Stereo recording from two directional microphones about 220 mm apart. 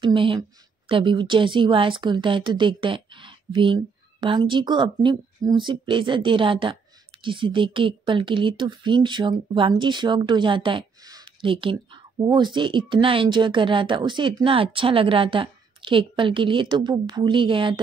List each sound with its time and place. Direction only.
0.0 s speech: 25° right (ahead or behind)